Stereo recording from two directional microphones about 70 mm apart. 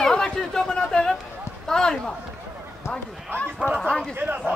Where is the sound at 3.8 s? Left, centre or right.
Centre.